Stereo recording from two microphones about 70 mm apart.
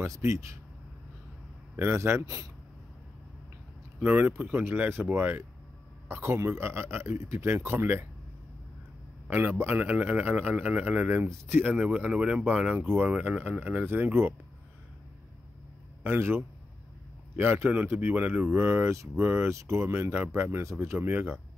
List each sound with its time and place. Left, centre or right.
0.0 s speech: right
1.8 s a man's voice: right
2.2 s speech: right
4.0 s speech: right
6.0 s a man's voice: right
9.3 s speech: right
11.2 s a man's voice: right
11.7 s a man's voice: centre
16.0 s a man's voice: right